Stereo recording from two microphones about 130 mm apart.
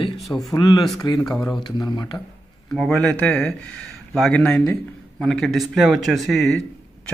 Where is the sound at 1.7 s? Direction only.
35° left (ahead or behind).